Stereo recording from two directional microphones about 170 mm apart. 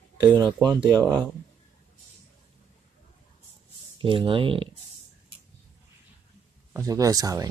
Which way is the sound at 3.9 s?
30° right (ahead or behind).